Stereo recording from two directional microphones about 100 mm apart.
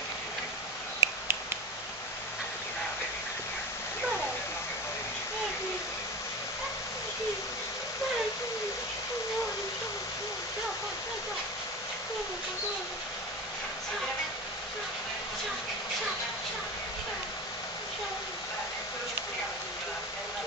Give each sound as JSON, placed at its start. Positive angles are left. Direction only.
{"t": 1.0, "sound": "finger snapping", "side_deg": -20}